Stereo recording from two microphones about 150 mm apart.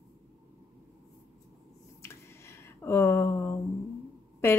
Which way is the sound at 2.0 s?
15° left (ahead or behind).